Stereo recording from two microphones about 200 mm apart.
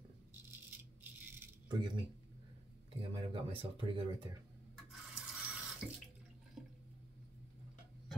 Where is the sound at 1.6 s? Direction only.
20° right (ahead or behind).